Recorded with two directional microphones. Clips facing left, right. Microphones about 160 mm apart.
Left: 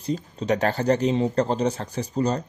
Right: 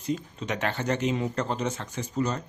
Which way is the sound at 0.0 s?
35° left (ahead or behind).